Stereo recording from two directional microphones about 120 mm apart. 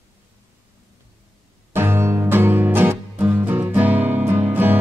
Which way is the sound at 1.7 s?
20° right (ahead or behind).